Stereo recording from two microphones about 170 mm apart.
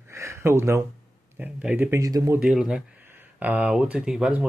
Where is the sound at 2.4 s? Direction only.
5° right (ahead or behind).